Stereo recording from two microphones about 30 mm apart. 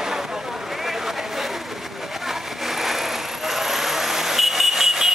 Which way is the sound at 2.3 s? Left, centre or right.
Centre.